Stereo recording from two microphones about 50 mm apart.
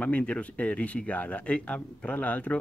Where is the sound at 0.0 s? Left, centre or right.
Left.